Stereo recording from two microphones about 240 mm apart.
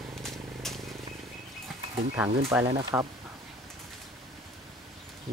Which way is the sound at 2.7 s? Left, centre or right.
Centre.